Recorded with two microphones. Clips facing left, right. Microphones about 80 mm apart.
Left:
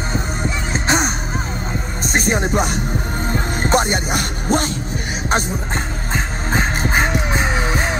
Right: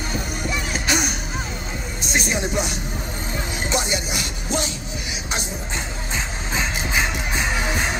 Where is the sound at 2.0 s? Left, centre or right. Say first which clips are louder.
Left 5 dB; left.